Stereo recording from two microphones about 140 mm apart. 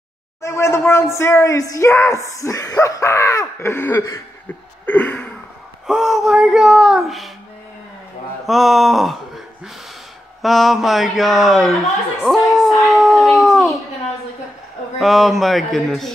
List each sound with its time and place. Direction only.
0.4 s speech: 20° left (ahead or behind)
4.8 s a sound: 10° left (ahead or behind)
5.9 s speech: centre (ahead or behind)
8.5 s speech: centre (ahead or behind)
10.4 s speech: centre (ahead or behind)
12.2 s a sound: centre (ahead or behind)
15.0 s speech: centre (ahead or behind)